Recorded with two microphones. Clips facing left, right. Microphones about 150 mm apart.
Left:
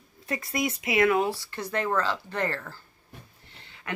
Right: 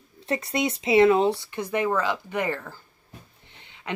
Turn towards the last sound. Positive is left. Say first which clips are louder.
# right 3 dB
turn(degrees=-20)  # may be behind; listen again after turning